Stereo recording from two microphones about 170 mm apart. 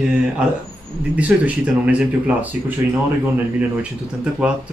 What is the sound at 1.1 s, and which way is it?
Speech, 10° right (ahead or behind).